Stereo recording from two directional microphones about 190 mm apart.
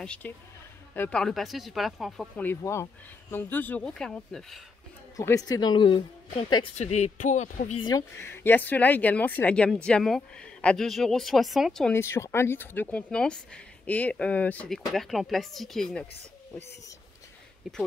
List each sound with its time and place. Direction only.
0.0 s speech: 5° left (ahead or behind)
5.1 s speech: 20° left (ahead or behind); by 7.8 s 40° left (ahead or behind)
7.8 s speech: 15° left (ahead or behind); by 11.9 s centre (ahead or behind)
11.9 s speech: 15° left (ahead or behind)
17.6 s speech: centre (ahead or behind)